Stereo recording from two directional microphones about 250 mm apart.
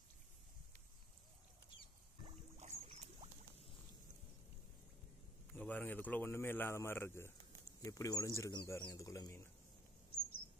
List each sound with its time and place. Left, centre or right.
2.2 s boat: right
5.5 s a man's voice: centre